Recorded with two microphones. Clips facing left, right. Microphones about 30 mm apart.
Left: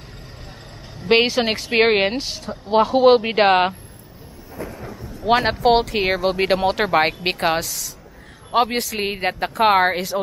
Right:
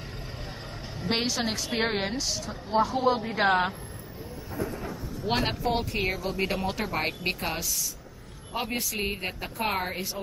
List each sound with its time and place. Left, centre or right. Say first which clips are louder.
1.0 s speech: left 11 dB; left
2.7 s speech: left 11 dB; left
5.2 s speech: left 11 dB; left
5.6 s speech: left 11 dB; left